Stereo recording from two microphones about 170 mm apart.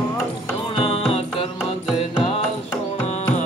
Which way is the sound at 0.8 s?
35° left (ahead or behind).